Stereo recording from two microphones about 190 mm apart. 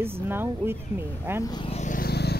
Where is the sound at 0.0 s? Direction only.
10° right (ahead or behind).